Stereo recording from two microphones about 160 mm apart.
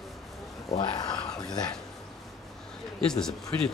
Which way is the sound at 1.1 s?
5° left (ahead or behind).